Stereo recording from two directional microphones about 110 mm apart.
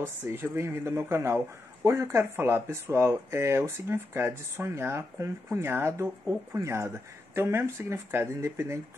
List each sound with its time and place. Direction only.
0.0 s speech: 20° right (ahead or behind)